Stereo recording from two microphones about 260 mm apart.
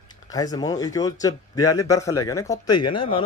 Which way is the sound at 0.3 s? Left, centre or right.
Centre.